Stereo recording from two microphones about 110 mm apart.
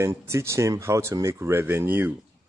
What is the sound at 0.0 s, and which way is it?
Speech, 25° right (ahead or behind).